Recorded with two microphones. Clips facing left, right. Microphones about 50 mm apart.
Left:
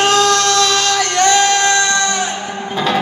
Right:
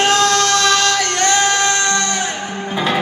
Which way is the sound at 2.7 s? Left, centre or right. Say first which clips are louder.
Left 2 dB; centre.